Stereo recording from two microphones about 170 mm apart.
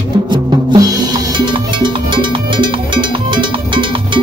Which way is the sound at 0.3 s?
25° right (ahead or behind).